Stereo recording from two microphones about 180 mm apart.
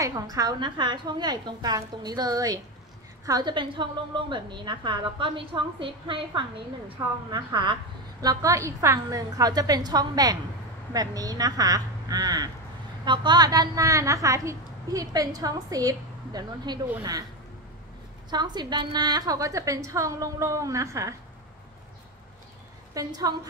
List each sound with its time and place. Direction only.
0.0 s a woman's voice: 20° right (ahead or behind)
18.3 s a woman's voice: 25° right (ahead or behind)
22.9 s a woman's voice: 20° right (ahead or behind)